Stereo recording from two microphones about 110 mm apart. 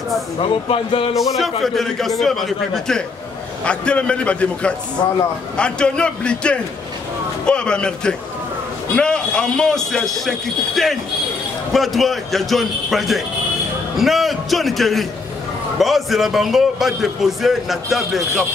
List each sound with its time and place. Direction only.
0.4 s speech: 55° left (ahead or behind)
1.1 s a man's voice: centre (ahead or behind)
5.0 s a man's voice: 40° left (ahead or behind)
5.6 s a man's voice: 10° left (ahead or behind)